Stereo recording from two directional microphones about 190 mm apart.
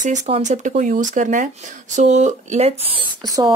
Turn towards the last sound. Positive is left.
turn(degrees=-20)  # may be behind; listen again after turning